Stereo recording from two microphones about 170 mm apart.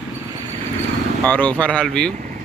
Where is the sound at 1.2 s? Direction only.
10° left (ahead or behind).